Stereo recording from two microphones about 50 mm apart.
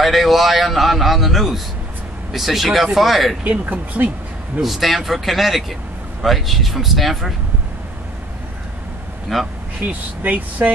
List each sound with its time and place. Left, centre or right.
0.0 s a man's voice: centre
3.4 s speech: right
4.6 s a man's voice: centre
9.3 s a man's voice: centre
9.8 s speech: right